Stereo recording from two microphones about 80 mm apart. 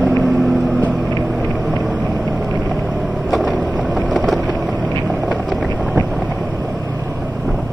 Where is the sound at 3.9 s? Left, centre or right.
Centre.